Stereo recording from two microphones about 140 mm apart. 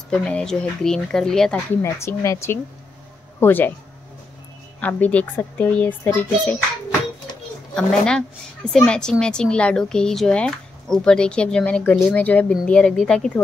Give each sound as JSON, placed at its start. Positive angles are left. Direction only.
{"t": 0.1, "sound": "speech", "side_deg": 5}
{"t": 1.8, "sound": "speech", "side_deg": 20}
{"t": 4.7, "sound": "a child's voice", "side_deg": 10}